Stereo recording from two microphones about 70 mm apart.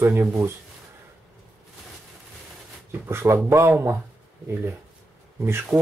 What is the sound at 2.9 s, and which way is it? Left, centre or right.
Speech, right.